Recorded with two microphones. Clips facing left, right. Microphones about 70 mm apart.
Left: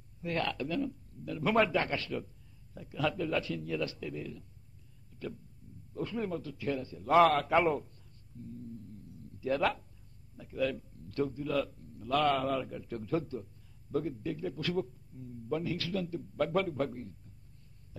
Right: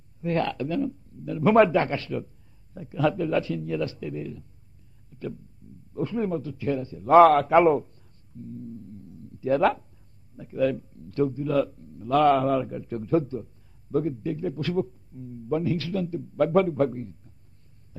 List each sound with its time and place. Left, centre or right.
0.2 s a man's voice: right
5.1 s a sound: right
5.9 s a man's voice: right